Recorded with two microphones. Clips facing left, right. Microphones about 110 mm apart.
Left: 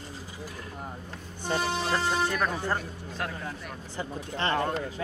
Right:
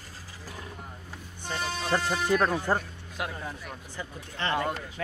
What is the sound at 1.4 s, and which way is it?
Speech, 30° left (ahead or behind).